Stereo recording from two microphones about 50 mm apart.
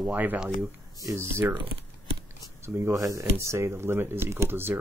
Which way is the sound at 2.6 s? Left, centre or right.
Right.